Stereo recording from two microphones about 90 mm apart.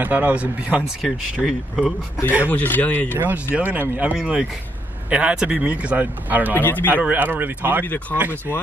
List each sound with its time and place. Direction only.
0.0 s speech: 20° right (ahead or behind); by 2.0 s 5° right (ahead or behind)
2.5 s speech: 20° left (ahead or behind)
3.1 s speech: 20° right (ahead or behind)
6.5 s speech: 20° left (ahead or behind)
6.9 s speech: 20° right (ahead or behind)
7.8 s speech: 20° left (ahead or behind)